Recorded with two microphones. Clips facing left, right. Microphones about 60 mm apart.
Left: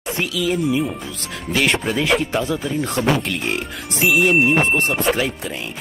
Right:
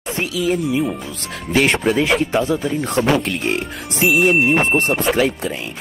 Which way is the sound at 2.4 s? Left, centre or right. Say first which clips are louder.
Right 2 dB; right.